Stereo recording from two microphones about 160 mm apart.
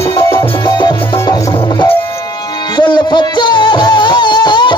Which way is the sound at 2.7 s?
30° left (ahead or behind).